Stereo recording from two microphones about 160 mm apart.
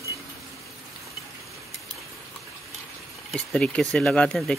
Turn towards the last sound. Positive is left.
turn(degrees=5)  # may be behind; listen again after turning